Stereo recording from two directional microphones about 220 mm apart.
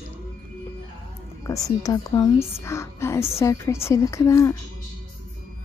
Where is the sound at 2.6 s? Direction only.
10° left (ahead or behind).